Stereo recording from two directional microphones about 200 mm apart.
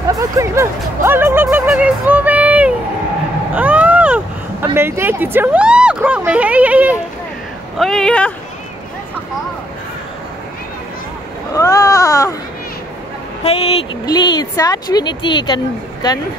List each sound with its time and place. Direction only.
0.1 s music: 15° right (ahead or behind)
3.5 s vehicle: 5° right (ahead or behind)
4.7 s speech: 10° right (ahead or behind); by 8.3 s 5° left (ahead or behind)
11.5 s speech: 15° left (ahead or behind)
13.4 s speech: 30° left (ahead or behind)